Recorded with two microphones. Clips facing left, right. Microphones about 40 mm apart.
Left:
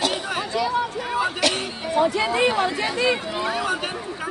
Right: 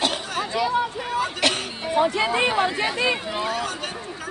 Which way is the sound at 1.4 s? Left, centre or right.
Right.